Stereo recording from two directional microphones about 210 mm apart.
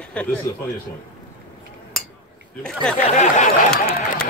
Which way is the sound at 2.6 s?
5° left (ahead or behind).